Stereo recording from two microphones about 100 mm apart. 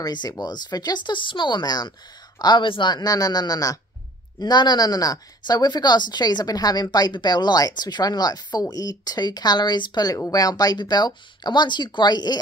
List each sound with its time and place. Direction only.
0.0 s speech: 45° left (ahead or behind)